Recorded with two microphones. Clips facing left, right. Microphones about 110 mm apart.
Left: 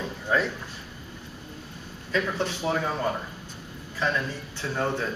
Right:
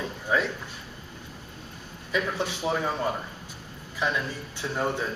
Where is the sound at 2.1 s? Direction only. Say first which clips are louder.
Left 1 dB; 15° right (ahead or behind).